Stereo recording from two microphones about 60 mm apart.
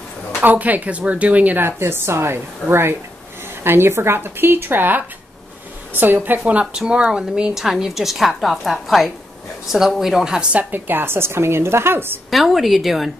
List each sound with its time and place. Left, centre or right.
0.4 s speech: right
1.6 s a woman's voice: right; by 10.5 s centre
10.5 s a woman's voice: right
12.3 s speech: centre